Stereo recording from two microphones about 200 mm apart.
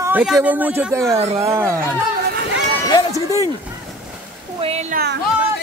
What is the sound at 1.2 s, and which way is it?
Speech, 30° right (ahead or behind).